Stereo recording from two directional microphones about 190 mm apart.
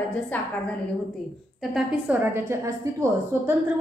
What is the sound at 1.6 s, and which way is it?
A woman's voice, centre (ahead or behind).